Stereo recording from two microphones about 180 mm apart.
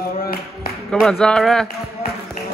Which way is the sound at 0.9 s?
5° left (ahead or behind).